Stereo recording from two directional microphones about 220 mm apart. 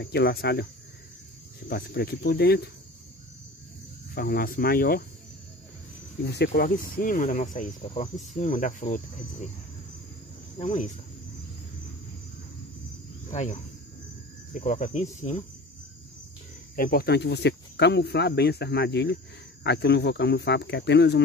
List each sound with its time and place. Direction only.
0.0 s speech: 45° left (ahead or behind)
1.7 s speech: 45° left (ahead or behind)
4.1 s speech: 45° left (ahead or behind)
6.2 s speech: 50° left (ahead or behind)
10.6 s speech: 30° left (ahead or behind)
13.3 s speech: 30° left (ahead or behind)
16.7 s speech: 45° left (ahead or behind)